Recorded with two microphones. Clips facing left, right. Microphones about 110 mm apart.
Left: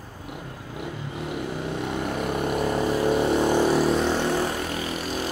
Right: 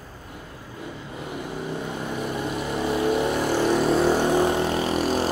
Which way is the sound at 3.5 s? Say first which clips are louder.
Even; 10° left (ahead or behind).